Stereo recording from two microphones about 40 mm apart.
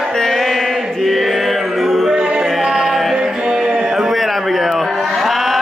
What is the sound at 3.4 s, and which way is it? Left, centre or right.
Music, right.